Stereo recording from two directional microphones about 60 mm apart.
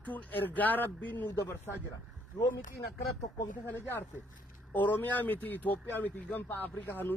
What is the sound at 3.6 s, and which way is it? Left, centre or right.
Speech, left.